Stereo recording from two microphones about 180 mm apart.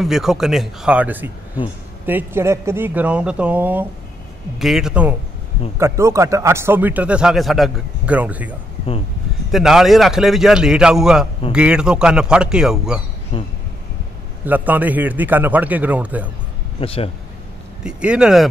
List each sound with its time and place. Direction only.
0.0 s a man's voice: centre (ahead or behind)
13.3 s speech: 30° left (ahead or behind)
14.4 s speech: 10° right (ahead or behind)
16.8 s speech: 30° left (ahead or behind)
17.8 s a man's voice: 5° right (ahead or behind)